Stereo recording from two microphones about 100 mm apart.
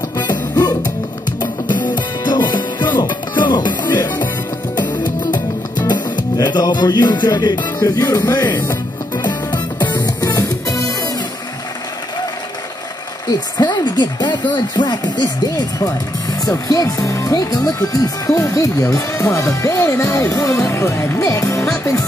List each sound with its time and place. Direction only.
0.2 s music: 45° left (ahead or behind)
1.9 s music: 50° left (ahead or behind)
5.3 s music: 45° left (ahead or behind)
8.5 s music: 20° left (ahead or behind)
9.2 s music: 45° left (ahead or behind)
13.6 s speech: 45° left (ahead or behind); by 21.6 s 25° left (ahead or behind)